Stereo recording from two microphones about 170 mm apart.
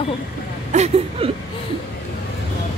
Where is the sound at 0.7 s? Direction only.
40° right (ahead or behind).